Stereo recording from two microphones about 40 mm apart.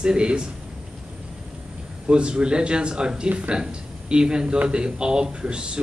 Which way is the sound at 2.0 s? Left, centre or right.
Right.